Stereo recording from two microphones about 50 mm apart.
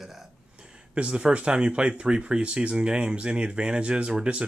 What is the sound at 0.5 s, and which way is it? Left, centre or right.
Speech, centre.